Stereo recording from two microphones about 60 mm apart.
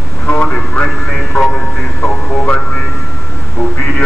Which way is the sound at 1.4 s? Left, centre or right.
Centre.